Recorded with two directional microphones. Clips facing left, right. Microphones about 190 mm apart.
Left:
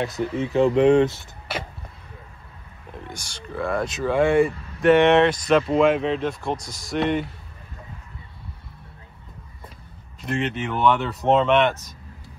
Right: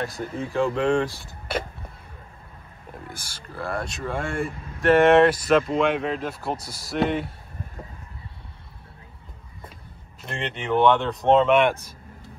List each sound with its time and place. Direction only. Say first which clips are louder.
0.0 s speech: left 4 dB; 20° left (ahead or behind)
3.1 s speech: left 4 dB; 5° right (ahead or behind)
10.2 s speech: left 5 dB; centre (ahead or behind)